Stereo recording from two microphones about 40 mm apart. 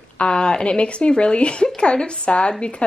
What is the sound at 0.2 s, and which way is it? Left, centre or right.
A woman's voice, left.